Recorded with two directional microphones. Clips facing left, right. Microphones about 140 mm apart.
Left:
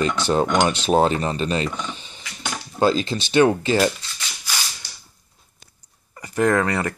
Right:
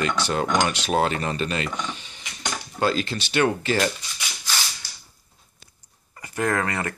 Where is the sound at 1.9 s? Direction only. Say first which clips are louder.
Left 2 dB; 35° left (ahead or behind).